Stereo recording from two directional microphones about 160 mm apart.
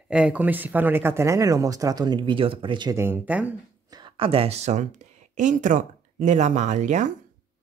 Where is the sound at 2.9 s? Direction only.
15° right (ahead or behind).